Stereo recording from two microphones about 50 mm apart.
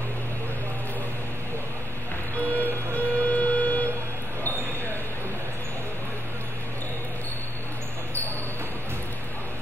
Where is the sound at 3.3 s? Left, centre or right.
Left.